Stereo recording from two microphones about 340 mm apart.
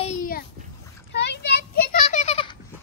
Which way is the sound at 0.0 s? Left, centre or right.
Left.